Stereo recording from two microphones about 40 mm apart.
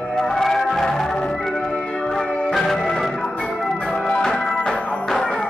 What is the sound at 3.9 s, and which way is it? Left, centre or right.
Music, left.